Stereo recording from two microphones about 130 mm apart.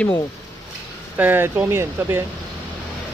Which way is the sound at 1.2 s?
15° right (ahead or behind).